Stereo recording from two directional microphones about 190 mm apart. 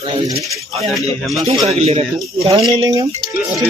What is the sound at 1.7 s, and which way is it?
Speech, 30° right (ahead or behind).